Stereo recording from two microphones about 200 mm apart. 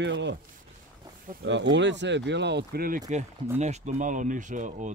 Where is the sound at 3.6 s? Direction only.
35° right (ahead or behind).